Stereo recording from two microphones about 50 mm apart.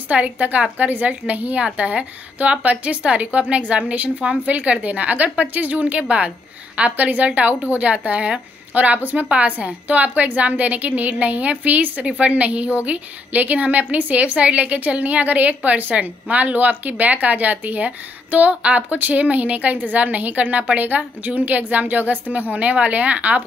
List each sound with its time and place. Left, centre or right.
0.1 s a woman's voice: right